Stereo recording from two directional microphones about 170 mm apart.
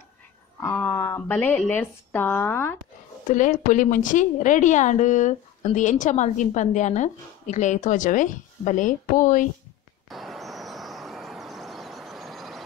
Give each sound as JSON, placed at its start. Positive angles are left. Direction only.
{"t": 0.6, "sound": "speech", "side_deg": 10}
{"t": 3.3, "sound": "a woman's voice", "side_deg": 50}
{"t": 10.0, "sound": "vehicle", "side_deg": 0}